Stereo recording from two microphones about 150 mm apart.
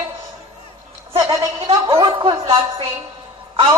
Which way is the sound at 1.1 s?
25° right (ahead or behind).